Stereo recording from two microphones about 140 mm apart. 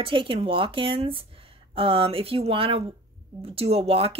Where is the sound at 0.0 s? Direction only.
40° right (ahead or behind).